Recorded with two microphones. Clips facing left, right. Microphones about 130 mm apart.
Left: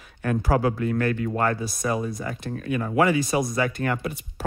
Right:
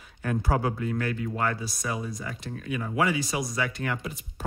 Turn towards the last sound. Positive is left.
turn(degrees=60)  # may be behind; listen again after turning